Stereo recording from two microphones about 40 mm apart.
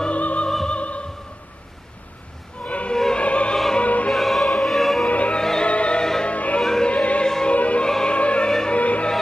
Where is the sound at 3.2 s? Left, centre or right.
Left.